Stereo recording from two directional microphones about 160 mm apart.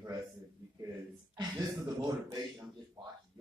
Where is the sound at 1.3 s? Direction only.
20° right (ahead or behind).